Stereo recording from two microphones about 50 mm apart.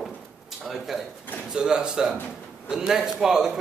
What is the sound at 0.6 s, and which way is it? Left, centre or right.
Speech, centre.